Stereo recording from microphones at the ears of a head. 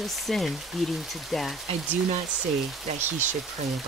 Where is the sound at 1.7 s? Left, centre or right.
Right.